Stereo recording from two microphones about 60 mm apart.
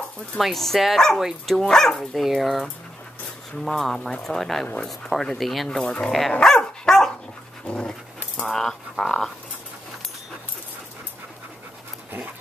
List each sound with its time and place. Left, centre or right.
0.4 s speech: centre
6.4 s dog: centre
7.6 s speech: centre
8.5 s speech: centre